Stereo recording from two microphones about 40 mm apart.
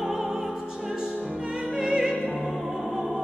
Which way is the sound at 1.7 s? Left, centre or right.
Centre.